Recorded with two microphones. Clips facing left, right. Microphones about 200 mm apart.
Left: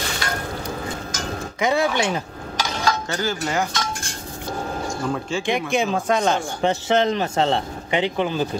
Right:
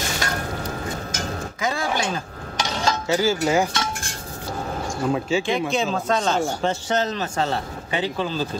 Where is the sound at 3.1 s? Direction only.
5° right (ahead or behind).